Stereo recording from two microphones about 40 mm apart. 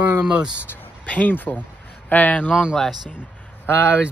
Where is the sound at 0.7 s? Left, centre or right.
Left.